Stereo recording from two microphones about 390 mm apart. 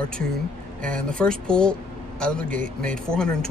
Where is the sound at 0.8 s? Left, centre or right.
Centre.